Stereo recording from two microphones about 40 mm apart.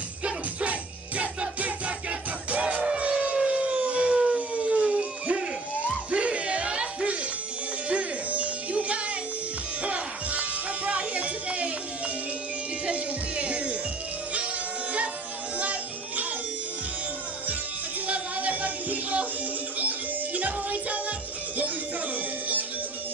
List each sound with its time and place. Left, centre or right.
0.2 s music: right
3.0 s civil defense siren: right
4.3 s music: right
12.8 s music: right
18.0 s a sound: right
19.8 s music: right